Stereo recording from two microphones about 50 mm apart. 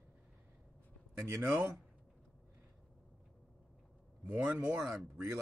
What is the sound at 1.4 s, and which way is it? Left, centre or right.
Speech, right.